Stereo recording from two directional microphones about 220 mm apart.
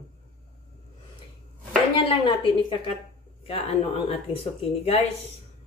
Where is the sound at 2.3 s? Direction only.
20° left (ahead or behind).